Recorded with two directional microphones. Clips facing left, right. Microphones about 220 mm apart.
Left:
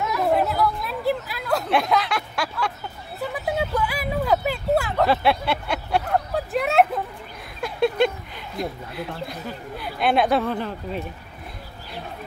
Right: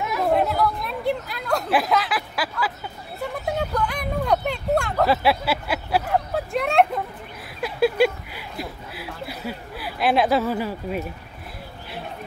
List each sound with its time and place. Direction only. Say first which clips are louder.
0.3 s speech: right 1 dB; centre (ahead or behind)
3.2 s vehicle: left 1 dB; centre (ahead or behind)
7.6 s a sound: right 1 dB; 5° right (ahead or behind)